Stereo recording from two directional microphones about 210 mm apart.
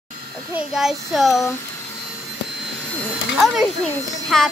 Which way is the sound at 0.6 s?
Centre (ahead or behind).